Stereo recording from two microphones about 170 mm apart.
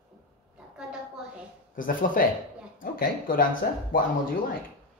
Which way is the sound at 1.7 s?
55° left (ahead or behind).